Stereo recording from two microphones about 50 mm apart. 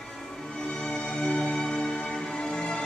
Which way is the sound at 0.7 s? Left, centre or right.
Centre.